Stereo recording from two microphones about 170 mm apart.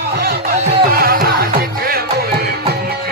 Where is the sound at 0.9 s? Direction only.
60° right (ahead or behind).